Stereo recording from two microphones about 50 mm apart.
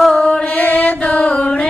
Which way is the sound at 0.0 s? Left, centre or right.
Centre.